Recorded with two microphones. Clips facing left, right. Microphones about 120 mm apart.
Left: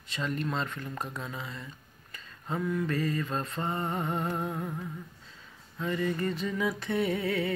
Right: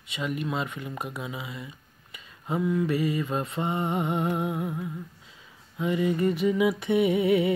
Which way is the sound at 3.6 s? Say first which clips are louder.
Right 5 dB; 15° right (ahead or behind).